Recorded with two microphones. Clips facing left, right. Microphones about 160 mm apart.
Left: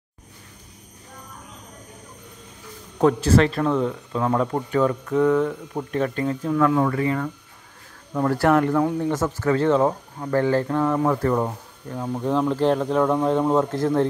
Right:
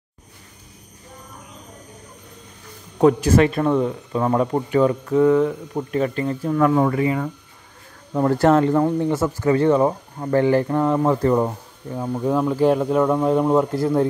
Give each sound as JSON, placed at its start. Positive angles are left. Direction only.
{"t": 3.0, "sound": "speech", "side_deg": -15}
{"t": 6.8, "sound": "speech", "side_deg": -20}